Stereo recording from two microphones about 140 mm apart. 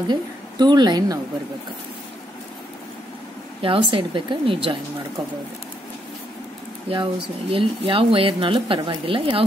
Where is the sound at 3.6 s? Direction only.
40° right (ahead or behind).